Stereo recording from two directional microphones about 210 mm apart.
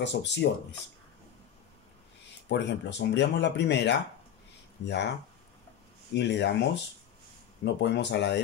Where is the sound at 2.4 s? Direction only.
55° left (ahead or behind).